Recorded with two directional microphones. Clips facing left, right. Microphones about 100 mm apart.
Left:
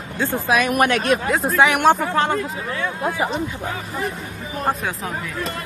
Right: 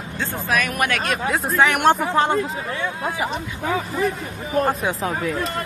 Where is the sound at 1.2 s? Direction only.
Centre (ahead or behind).